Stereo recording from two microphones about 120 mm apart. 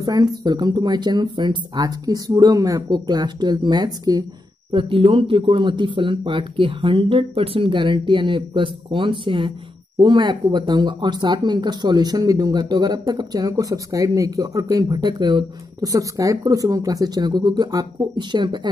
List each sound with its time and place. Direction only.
0.0 s speech: 35° right (ahead or behind)
4.7 s speech: 50° right (ahead or behind)